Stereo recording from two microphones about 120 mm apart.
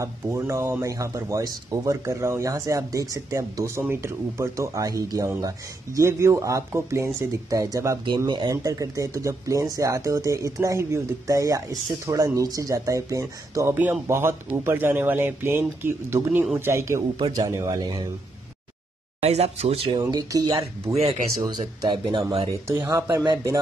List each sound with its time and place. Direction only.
0.0 s speech: 25° right (ahead or behind)
19.2 s speech: 60° right (ahead or behind)
20.0 s speech: 35° right (ahead or behind)
20.5 s speech: 60° right (ahead or behind)
21.8 s speech: 40° right (ahead or behind)
22.8 s speech: 25° right (ahead or behind)